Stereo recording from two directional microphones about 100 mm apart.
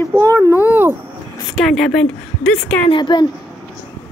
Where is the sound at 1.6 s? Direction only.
Centre (ahead or behind).